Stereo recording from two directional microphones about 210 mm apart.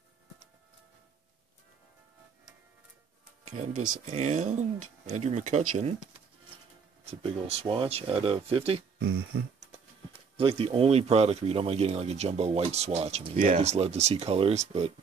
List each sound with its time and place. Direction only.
4.0 s speech: 35° right (ahead or behind)
7.1 s speech: 25° right (ahead or behind)
9.0 s a sound: 50° right (ahead or behind)
10.3 s speech: 25° right (ahead or behind)